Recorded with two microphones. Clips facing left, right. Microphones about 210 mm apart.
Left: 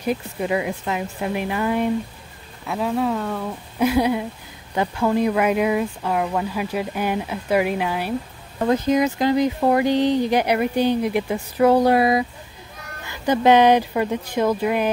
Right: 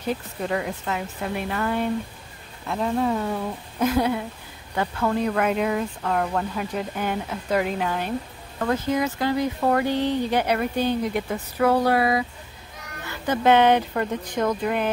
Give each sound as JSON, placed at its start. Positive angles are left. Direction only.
{"t": 0.0, "sound": "speech", "side_deg": 10}
{"t": 3.8, "sound": "speech", "side_deg": 10}
{"t": 13.3, "sound": "speech", "side_deg": 15}